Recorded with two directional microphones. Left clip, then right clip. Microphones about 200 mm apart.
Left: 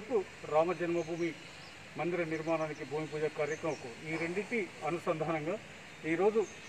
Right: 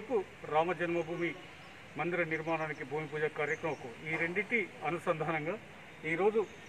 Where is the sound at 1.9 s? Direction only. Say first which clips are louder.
Right 1 dB; 10° right (ahead or behind).